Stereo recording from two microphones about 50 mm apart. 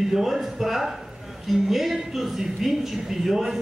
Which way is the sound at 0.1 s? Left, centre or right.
Centre.